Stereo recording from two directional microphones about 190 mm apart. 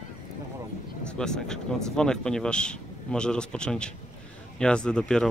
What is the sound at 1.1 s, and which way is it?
Speech, 5° left (ahead or behind).